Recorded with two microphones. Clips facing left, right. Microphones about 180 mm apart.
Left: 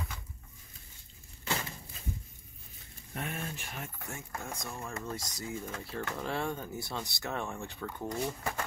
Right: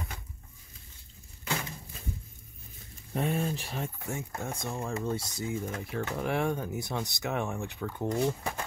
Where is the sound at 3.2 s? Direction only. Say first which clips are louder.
Right 9 dB; 30° right (ahead or behind); by 7.7 s 15° right (ahead or behind).